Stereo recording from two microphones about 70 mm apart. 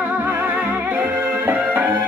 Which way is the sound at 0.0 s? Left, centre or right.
Right.